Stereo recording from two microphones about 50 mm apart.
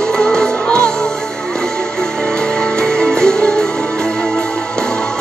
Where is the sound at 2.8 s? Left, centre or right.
Centre.